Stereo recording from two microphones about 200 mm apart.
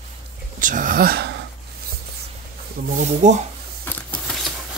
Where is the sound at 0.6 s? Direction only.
40° right (ahead or behind).